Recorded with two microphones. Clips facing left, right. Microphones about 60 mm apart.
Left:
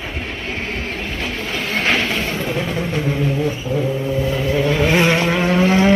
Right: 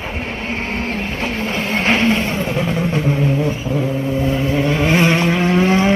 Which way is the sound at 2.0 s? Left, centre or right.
Centre.